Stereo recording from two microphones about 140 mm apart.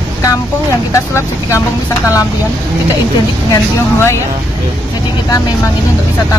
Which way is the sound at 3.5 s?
20° left (ahead or behind).